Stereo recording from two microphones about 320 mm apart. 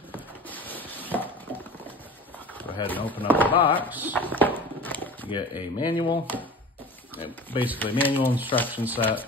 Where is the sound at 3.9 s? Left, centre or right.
Centre.